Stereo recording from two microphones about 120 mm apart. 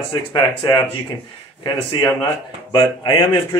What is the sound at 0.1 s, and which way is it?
Speech, 35° left (ahead or behind).